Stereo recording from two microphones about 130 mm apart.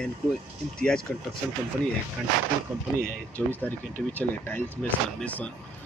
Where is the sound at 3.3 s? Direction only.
10° left (ahead or behind).